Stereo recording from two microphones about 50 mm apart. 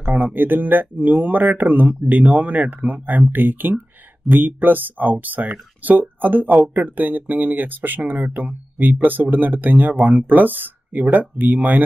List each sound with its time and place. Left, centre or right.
0.0 s speech: right